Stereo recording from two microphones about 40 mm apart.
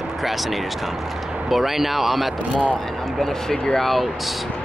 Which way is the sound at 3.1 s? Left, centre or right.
Centre.